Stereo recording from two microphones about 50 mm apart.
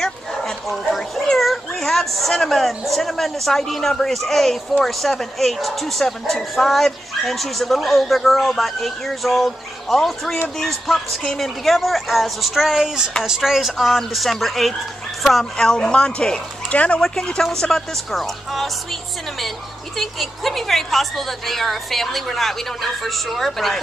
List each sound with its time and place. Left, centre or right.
0.0 s dog: centre
4.0 s speech: centre
15.5 s speech: centre
17.0 s speech: centre
18.1 s speech: centre